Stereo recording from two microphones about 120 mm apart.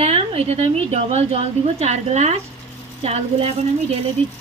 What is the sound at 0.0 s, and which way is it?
A woman's voice, 60° right (ahead or behind).